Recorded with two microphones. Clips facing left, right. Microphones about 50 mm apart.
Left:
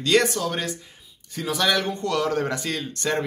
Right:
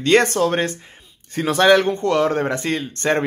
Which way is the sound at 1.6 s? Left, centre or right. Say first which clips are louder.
Right 9 dB; right.